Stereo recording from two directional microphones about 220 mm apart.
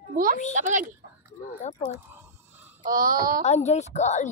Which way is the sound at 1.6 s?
30° left (ahead or behind).